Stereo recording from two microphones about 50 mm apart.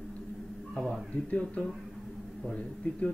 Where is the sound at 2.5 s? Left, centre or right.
Left.